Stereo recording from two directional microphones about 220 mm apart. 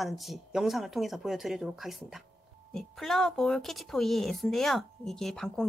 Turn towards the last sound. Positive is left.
turn(degrees=0)  # may be behind; listen again after turning